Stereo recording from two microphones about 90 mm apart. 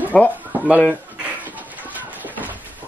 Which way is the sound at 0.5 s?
20° right (ahead or behind).